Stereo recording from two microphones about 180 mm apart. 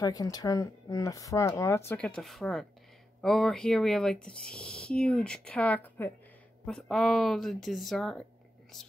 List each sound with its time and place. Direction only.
0.0 s speech: 20° left (ahead or behind); by 8.2 s centre (ahead or behind)